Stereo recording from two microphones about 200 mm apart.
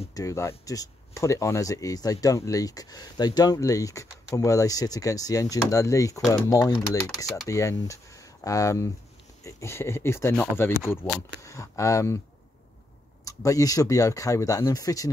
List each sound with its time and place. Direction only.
0.1 s speech: 15° left (ahead or behind)
13.2 s speech: 15° left (ahead or behind)